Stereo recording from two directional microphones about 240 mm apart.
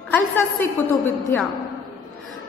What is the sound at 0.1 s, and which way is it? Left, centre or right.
A woman's voice, centre.